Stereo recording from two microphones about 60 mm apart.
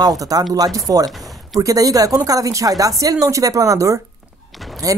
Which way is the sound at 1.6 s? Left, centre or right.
Right.